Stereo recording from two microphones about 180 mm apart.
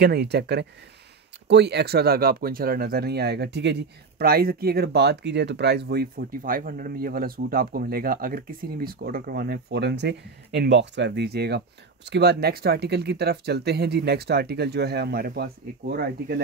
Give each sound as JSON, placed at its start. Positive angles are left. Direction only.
{"t": 0.0, "sound": "speech", "side_deg": -65}
{"t": 4.2, "sound": "speech", "side_deg": -60}